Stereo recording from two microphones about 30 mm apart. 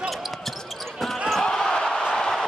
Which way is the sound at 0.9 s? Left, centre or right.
Centre.